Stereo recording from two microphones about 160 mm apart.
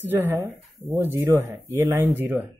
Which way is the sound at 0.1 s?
15° right (ahead or behind).